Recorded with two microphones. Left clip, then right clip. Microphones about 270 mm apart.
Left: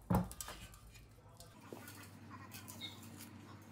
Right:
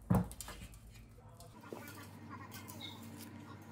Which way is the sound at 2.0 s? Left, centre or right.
Centre.